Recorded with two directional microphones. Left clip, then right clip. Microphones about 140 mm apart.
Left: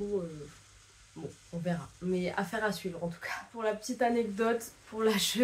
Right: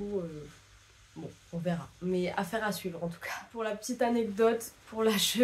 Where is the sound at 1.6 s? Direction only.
20° right (ahead or behind).